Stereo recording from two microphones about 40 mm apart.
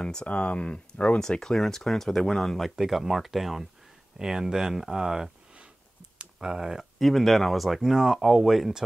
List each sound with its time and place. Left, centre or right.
0.0 s speech: left
0.3 s speech: left
1.4 s speech: centre
2.8 s speech: centre
7.0 s speech: centre